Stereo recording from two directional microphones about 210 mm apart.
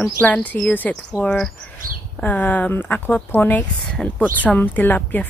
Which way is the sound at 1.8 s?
45° right (ahead or behind).